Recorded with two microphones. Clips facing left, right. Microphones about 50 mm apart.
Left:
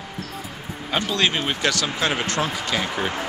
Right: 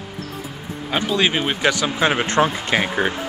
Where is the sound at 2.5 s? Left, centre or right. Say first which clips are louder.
Right 4 dB; right.